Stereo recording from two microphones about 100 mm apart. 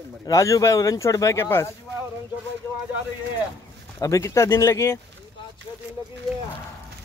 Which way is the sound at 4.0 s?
30° left (ahead or behind).